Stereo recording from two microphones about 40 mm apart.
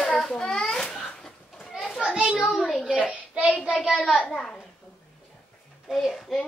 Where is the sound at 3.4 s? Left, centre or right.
Right.